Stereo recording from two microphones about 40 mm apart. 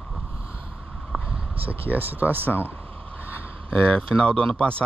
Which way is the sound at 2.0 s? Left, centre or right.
Right.